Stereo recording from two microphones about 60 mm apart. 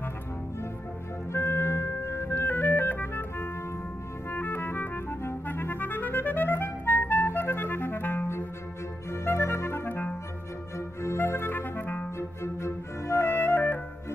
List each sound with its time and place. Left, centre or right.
1.3 s organ: left
4.3 s clarinet: left
11.0 s clarinet: left
12.2 s music: left